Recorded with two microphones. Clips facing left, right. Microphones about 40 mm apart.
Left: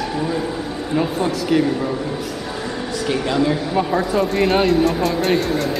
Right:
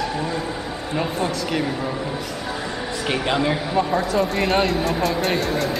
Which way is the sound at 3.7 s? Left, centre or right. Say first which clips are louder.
Even; centre.